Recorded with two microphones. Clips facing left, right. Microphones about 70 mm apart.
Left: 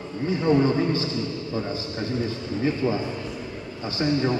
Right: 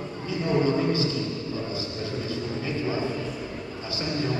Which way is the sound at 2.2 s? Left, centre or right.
Left.